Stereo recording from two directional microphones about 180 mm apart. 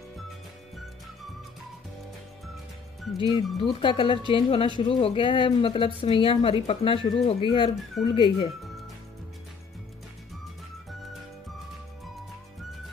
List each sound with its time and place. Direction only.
3.2 s speech: 25° left (ahead or behind)